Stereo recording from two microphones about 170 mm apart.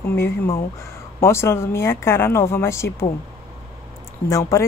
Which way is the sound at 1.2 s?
15° left (ahead or behind).